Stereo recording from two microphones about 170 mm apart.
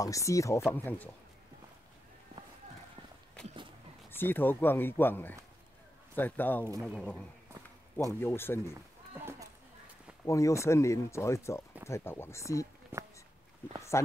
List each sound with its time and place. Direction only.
0.0 s speech: 20° left (ahead or behind)
4.1 s a man's voice: 10° left (ahead or behind)
9.1 s a sound: 15° right (ahead or behind)
10.2 s speech: 20° left (ahead or behind)
12.9 s a sound: 15° right (ahead or behind)
13.9 s speech: 15° left (ahead or behind)